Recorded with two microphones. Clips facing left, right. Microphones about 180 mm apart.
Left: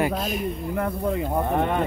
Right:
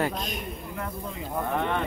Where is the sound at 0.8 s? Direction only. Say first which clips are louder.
Left 11 dB; 60° left (ahead or behind).